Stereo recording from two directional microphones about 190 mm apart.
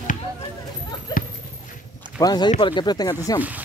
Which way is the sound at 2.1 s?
20° left (ahead or behind).